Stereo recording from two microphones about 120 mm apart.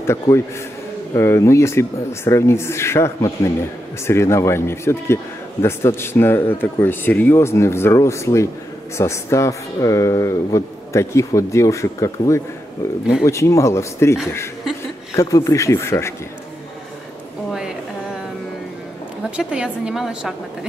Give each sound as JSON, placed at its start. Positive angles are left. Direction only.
{"t": 0.0, "sound": "speech", "side_deg": 20}
{"t": 15.1, "sound": "speech", "side_deg": 30}
{"t": 19.3, "sound": "a woman's voice", "side_deg": -10}